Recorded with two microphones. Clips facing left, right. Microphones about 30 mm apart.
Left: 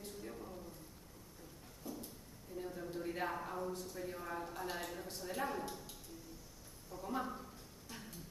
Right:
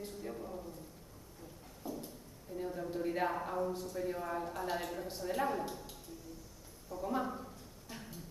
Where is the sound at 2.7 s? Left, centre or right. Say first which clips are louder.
Right 6 dB; centre.